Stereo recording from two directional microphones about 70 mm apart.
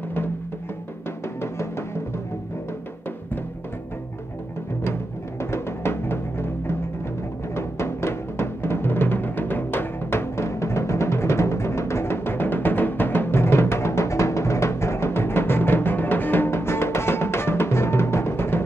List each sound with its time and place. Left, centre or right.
1.4 s music: left
5.4 s music: left